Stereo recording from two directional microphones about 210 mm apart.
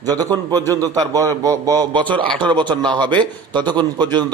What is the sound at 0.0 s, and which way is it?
A man's voice, 20° right (ahead or behind).